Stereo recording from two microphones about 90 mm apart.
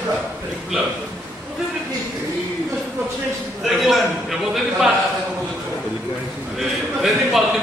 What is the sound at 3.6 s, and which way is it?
A man's voice, centre (ahead or behind).